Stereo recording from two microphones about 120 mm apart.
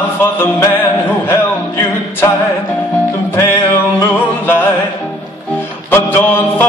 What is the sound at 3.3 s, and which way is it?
Music, 20° left (ahead or behind).